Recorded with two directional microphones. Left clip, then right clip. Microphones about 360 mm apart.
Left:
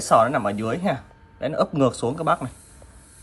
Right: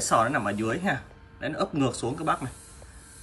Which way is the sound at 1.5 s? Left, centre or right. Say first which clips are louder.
Left 7 dB; left.